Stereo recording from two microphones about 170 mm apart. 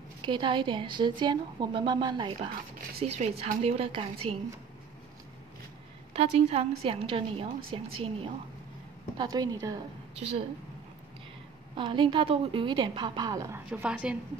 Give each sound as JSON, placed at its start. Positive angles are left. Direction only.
{"t": 0.2, "sound": "a woman's voice", "side_deg": -30}
{"t": 3.0, "sound": "a woman's voice", "side_deg": -40}
{"t": 6.1, "sound": "a woman's voice", "side_deg": -35}
{"t": 9.2, "sound": "a woman's voice", "side_deg": -25}
{"t": 11.7, "sound": "a woman's voice", "side_deg": -30}
{"t": 13.7, "sound": "a woman's voice", "side_deg": -5}